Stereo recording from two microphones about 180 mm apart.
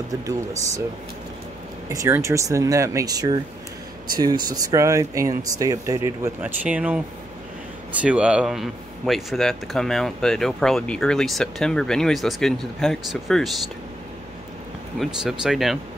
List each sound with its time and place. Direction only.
0.2 s speech: 20° right (ahead or behind)
1.9 s speech: 15° right (ahead or behind)
4.6 s speech: 20° right (ahead or behind)
8.0 s speech: 5° right (ahead or behind)
15.0 s speech: centre (ahead or behind)